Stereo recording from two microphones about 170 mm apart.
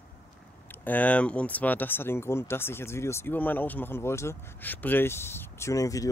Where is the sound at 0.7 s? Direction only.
10° left (ahead or behind).